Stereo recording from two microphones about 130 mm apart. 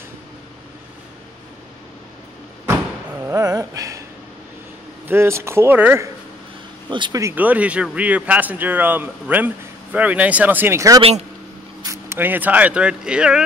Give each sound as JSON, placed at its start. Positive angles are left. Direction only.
{"t": 3.2, "sound": "a sound", "side_deg": -25}
{"t": 5.0, "sound": "speech", "side_deg": -20}
{"t": 6.9, "sound": "speech", "side_deg": -40}
{"t": 7.3, "sound": "speech", "side_deg": -10}
{"t": 11.0, "sound": "a man's voice", "side_deg": -50}
{"t": 11.8, "sound": "speech", "side_deg": -20}